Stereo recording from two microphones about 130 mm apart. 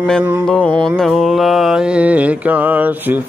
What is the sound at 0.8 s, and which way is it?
Mantra, centre (ahead or behind).